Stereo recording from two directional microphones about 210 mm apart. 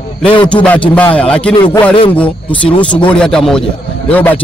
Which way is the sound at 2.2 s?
5° left (ahead or behind).